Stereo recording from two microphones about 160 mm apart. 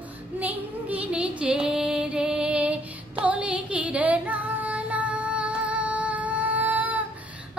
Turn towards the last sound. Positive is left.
turn(degrees=-10)  # may be behind; listen again after turning